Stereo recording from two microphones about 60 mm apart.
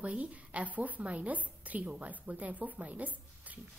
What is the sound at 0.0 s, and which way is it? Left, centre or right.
A woman's voice, right.